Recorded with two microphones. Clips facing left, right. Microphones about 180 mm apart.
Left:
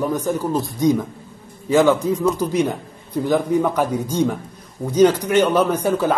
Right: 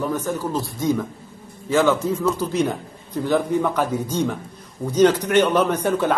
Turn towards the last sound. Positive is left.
turn(degrees=10)  # may be behind; listen again after turning